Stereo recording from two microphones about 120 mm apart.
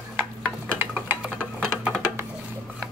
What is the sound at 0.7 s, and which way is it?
Stir, 15° right (ahead or behind).